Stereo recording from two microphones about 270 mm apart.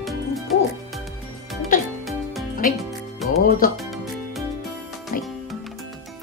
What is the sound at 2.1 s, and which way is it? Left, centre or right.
Music, centre.